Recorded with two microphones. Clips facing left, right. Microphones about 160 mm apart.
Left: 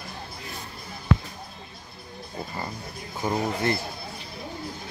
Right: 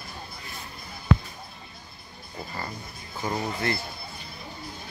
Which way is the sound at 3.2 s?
20° left (ahead or behind).